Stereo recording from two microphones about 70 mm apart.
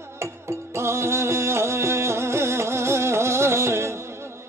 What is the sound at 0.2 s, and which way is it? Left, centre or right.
Music, right.